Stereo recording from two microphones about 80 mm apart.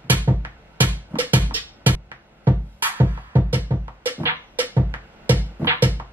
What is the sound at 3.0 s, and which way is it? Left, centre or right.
Music, right.